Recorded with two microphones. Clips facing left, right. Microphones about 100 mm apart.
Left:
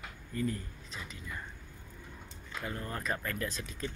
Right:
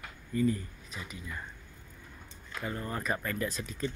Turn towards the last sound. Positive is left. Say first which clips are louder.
# right 4 dB
turn(degrees=0)  # may be behind; listen again after turning